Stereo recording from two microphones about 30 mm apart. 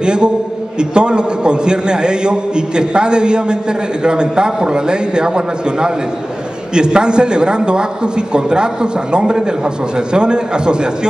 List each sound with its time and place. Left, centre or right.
0.0 s a man's voice: right
9.9 s a man's voice: right